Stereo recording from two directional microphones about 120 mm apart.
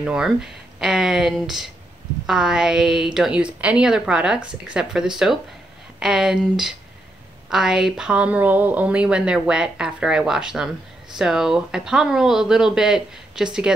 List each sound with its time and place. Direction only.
0.0 s a woman's voice: 5° right (ahead or behind)